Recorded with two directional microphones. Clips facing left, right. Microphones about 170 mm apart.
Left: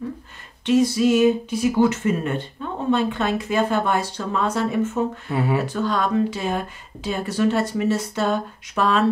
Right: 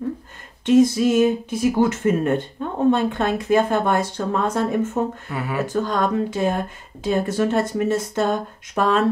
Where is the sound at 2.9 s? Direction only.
45° right (ahead or behind).